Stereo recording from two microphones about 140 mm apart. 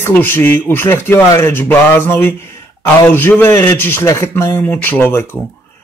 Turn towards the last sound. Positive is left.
turn(degrees=15)  # may be behind; listen again after turning